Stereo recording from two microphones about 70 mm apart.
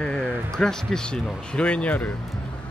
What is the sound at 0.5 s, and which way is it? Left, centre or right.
Speech, centre.